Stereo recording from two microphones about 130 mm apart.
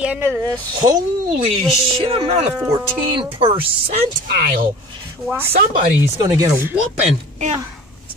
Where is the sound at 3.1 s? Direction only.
50° right (ahead or behind).